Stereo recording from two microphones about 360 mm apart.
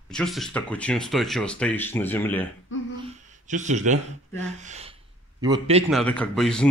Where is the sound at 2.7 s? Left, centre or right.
Left.